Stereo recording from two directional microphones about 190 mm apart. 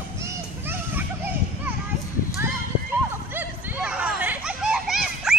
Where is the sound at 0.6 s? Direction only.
10° right (ahead or behind).